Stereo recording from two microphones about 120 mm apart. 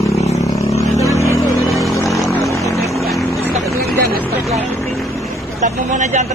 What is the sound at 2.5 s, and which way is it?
Vehicle, 25° left (ahead or behind).